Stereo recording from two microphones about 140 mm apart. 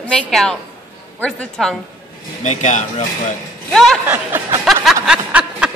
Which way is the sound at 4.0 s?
15° right (ahead or behind).